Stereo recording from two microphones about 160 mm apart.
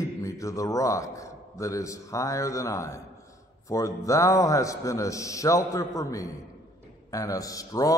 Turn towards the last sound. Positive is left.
turn(degrees=20)  # may be behind; listen again after turning